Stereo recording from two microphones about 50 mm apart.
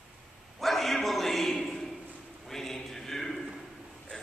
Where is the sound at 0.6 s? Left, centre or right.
Centre.